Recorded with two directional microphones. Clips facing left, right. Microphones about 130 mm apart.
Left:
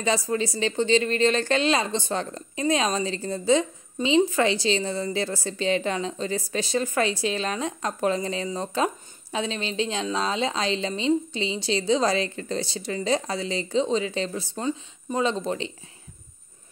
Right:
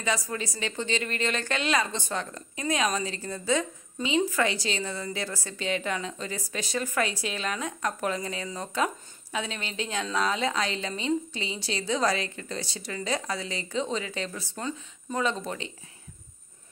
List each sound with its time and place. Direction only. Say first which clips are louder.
0.0 s a woman's voice: left 6 dB; 30° left (ahead or behind)